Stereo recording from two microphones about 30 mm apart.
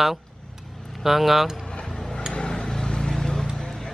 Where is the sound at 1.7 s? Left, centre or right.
Left.